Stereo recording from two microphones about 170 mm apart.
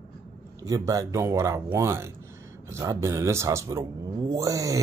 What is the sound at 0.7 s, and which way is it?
Speech, 20° right (ahead or behind).